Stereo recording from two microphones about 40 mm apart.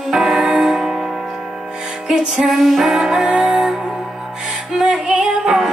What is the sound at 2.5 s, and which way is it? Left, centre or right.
Music, centre.